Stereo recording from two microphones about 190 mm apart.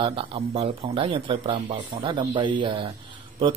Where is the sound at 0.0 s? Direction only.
30° right (ahead or behind).